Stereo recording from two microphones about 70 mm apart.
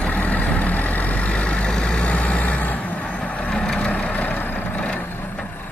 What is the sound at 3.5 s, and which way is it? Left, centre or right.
Vehicle, centre.